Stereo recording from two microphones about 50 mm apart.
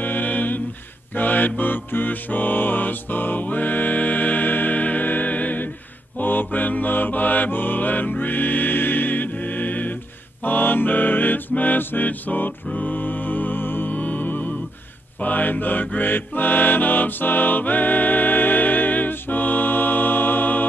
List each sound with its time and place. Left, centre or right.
0.0 s a capella: left
1.1 s mantra: left
10.4 s music: left
13.9 s music: left
15.2 s mantra: left